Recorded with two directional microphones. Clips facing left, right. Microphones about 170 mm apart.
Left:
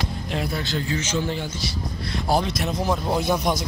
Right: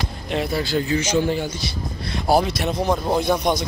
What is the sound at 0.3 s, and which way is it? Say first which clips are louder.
A man's voice: right 6 dB; 5° right (ahead or behind).